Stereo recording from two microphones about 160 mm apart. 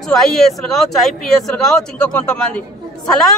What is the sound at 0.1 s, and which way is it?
Speech, centre (ahead or behind).